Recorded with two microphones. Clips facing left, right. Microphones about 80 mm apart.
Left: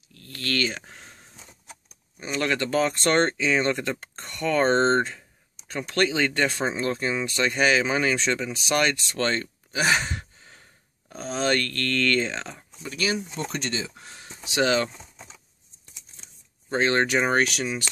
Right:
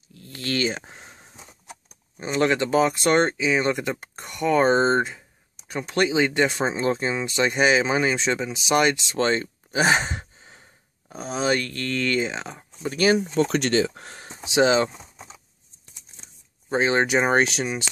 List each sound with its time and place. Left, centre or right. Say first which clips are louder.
0.1 s a sound: right 1 dB; centre
2.1 s speech: right 5 dB; right
9.8 s speech: right 3 dB; right
12.8 s speech: right 8 dB; right
13.2 s speech: right 9 dB; right
14.2 s speech: right 5 dB; right
16.6 s speech: right 1 dB; centre